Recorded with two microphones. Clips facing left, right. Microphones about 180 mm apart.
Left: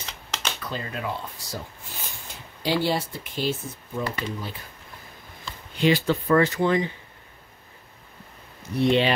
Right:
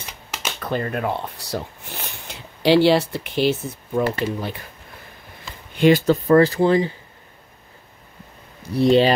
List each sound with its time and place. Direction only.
0.6 s speech: 55° right (ahead or behind)
5.8 s speech: 50° right (ahead or behind); by 6.9 s 35° right (ahead or behind)
8.7 s speech: 35° right (ahead or behind)